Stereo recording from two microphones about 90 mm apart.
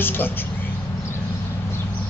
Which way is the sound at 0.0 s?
25° left (ahead or behind).